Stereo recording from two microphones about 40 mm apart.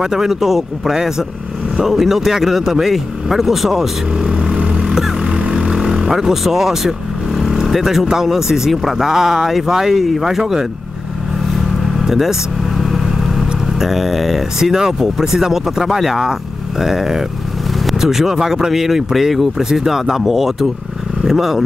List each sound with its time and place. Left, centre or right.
0.0 s speech: centre
4.2 s a sound: right
4.8 s vehicle: centre
8.1 s speech: centre
11.5 s vehicle: centre
16.8 s speech: centre